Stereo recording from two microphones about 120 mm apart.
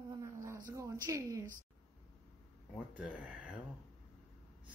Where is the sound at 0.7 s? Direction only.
25° right (ahead or behind).